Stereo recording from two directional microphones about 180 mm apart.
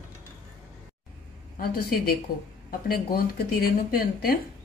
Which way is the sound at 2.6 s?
55° left (ahead or behind).